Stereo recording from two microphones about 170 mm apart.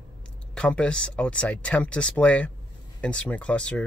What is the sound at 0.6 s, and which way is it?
Speech, 5° left (ahead or behind).